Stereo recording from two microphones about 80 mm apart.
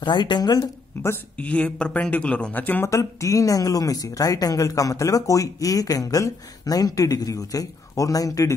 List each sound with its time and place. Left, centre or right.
0.0 s speech: left
1.4 s speech: centre
2.9 s speech: left